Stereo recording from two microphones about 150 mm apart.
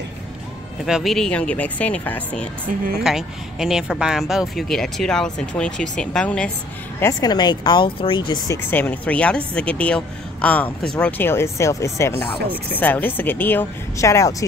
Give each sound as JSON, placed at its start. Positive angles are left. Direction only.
{"t": 0.8, "sound": "speech", "side_deg": 0}
{"t": 3.0, "sound": "speech", "side_deg": -5}
{"t": 7.0, "sound": "speech", "side_deg": 25}
{"t": 8.6, "sound": "speech", "side_deg": 15}